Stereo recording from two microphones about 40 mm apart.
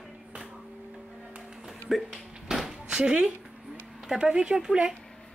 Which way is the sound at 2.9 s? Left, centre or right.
Centre.